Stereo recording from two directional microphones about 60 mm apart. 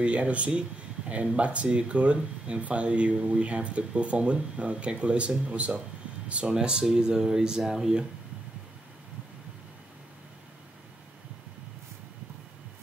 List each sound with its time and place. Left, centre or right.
0.0 s speech: right